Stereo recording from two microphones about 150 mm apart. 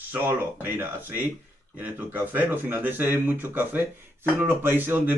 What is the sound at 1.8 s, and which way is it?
Speech, 10° right (ahead or behind).